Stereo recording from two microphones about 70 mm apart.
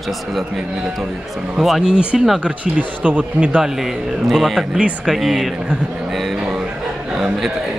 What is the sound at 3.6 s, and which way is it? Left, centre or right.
A man's voice, centre.